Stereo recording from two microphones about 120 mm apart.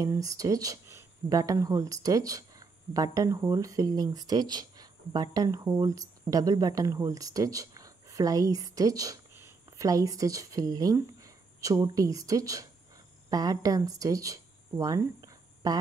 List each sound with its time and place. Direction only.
0.0 s speech: 30° right (ahead or behind)